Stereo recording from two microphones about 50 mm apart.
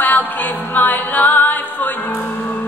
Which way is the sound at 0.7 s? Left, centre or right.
Left.